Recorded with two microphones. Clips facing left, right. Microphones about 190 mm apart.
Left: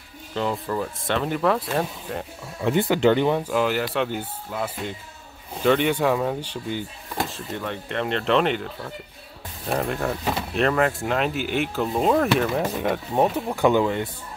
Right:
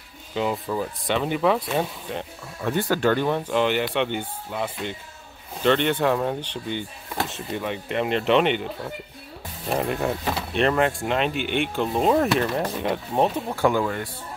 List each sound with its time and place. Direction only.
0.3 s speech: 5° right (ahead or behind)
2.6 s speech: 20° left (ahead or behind); by 8.6 s centre (ahead or behind)
9.7 s speech: centre (ahead or behind)
13.7 s speech: 20° left (ahead or behind)